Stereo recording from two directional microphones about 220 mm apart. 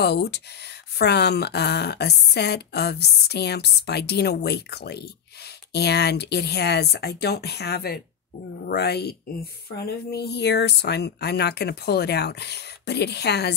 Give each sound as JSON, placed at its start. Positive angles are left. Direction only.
{"t": 0.0, "sound": "speech", "side_deg": 50}